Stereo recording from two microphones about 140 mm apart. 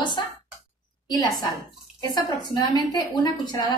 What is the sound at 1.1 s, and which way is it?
A woman's voice, 30° left (ahead or behind).